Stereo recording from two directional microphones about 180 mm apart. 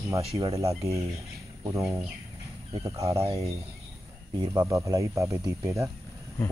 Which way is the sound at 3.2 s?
35° right (ahead or behind).